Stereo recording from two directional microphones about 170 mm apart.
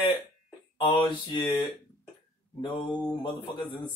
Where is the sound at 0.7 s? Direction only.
30° left (ahead or behind).